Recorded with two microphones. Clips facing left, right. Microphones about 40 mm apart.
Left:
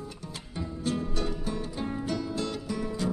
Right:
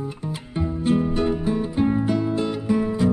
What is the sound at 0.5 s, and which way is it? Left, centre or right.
Music, right.